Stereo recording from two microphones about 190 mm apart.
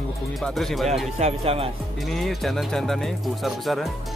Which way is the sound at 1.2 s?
30° right (ahead or behind).